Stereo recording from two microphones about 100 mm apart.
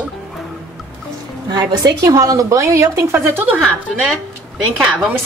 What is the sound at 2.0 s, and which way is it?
A woman's voice, 35° right (ahead or behind).